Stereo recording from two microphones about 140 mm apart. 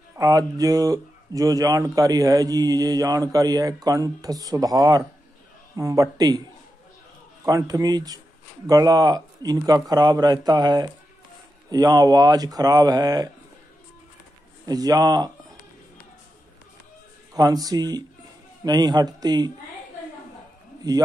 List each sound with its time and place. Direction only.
0.2 s speech: 25° right (ahead or behind)
7.4 s speech: 25° right (ahead or behind)
14.7 s speech: 25° right (ahead or behind)
17.3 s speech: 25° right (ahead or behind)
20.9 s speech: 25° right (ahead or behind)